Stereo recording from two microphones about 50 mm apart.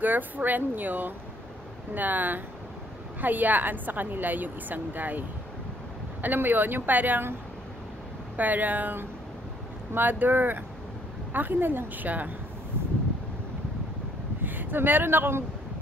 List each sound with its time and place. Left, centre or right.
0.0 s a woman's voice: right
6.2 s a woman's voice: right
8.4 s a woman's voice: right
14.4 s speech: right